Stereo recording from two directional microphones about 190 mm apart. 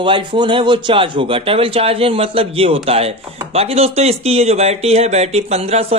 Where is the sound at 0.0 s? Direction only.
25° right (ahead or behind).